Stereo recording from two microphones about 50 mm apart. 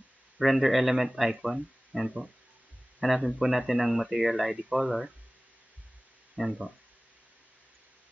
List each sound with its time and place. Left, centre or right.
0.4 s speech: centre
6.4 s speech: right